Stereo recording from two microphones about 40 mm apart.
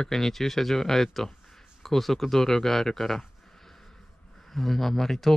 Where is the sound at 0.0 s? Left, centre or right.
Centre.